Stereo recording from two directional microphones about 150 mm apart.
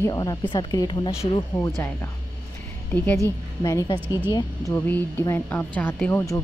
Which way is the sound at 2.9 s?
10° left (ahead or behind).